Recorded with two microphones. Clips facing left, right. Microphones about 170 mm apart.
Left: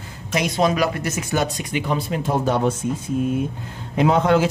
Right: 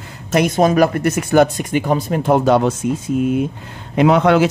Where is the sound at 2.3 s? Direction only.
80° right.